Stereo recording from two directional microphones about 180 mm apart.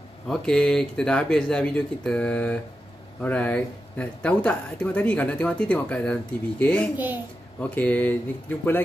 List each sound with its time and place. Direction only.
0.3 s speech: 5° left (ahead or behind)